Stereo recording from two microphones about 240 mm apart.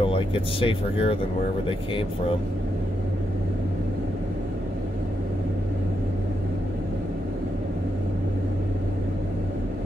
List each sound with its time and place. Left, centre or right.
0.0 s speech: left